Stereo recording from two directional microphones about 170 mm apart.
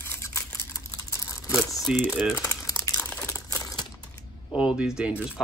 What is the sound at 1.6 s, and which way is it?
Speech, centre (ahead or behind).